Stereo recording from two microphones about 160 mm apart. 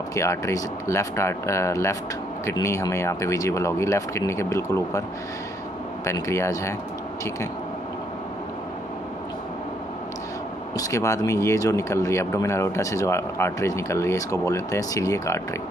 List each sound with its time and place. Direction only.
0.1 s speech: 20° left (ahead or behind)
6.0 s speech: 20° left (ahead or behind)
10.8 s speech: 20° left (ahead or behind)